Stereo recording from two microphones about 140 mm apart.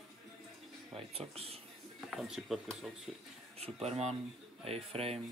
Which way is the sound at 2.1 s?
Centre (ahead or behind).